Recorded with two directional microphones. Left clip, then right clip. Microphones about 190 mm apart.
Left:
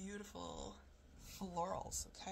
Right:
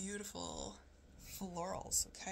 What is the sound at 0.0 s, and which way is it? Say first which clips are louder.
Speech: right 4 dB; 35° right (ahead or behind).